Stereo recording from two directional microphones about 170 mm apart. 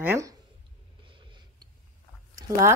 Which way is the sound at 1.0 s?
30° right (ahead or behind).